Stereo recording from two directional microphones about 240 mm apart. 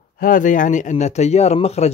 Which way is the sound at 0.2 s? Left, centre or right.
Left.